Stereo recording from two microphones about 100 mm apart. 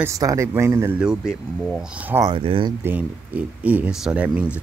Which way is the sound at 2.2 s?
60° right (ahead or behind).